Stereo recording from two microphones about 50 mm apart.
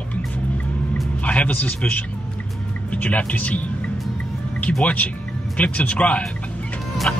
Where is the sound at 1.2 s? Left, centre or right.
Left.